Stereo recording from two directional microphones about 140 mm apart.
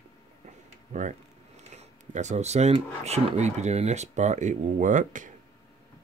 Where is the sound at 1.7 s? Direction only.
55° right (ahead or behind).